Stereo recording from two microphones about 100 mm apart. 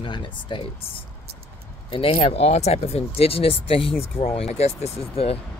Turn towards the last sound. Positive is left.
turn(degrees=80)